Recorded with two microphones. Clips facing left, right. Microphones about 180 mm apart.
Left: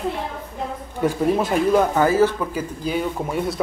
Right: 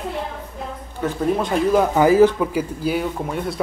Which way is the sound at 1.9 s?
15° right (ahead or behind).